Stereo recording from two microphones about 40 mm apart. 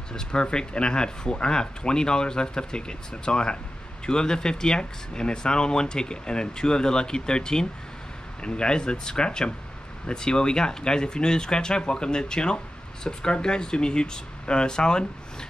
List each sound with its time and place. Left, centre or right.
0.1 s speech: centre